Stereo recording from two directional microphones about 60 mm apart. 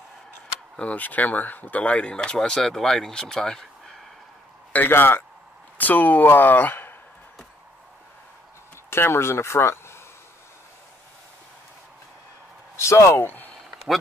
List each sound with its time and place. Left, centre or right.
0.7 s speech: left
4.7 s speech: left
8.9 s speech: left
12.7 s speech: left